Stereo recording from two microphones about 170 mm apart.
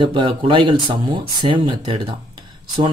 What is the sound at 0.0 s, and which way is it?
Speech, 30° right (ahead or behind).